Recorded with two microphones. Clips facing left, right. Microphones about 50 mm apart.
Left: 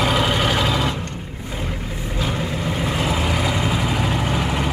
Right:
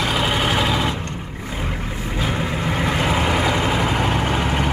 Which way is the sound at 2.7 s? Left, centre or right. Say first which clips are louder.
Right 2 dB; right.